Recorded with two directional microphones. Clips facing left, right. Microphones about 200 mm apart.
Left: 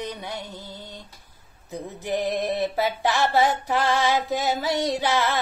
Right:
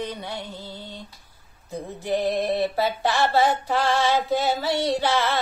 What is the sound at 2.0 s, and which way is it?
Female singing, 15° left (ahead or behind).